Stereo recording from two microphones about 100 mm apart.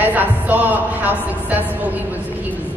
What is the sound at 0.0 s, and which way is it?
A woman's voice, 15° right (ahead or behind).